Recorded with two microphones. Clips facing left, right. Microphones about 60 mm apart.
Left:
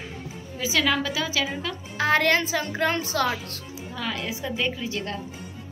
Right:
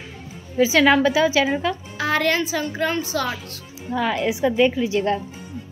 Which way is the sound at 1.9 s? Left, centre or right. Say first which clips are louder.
Left 1 dB; left.